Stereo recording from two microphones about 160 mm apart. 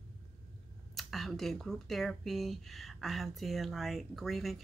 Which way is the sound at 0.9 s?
Centre (ahead or behind).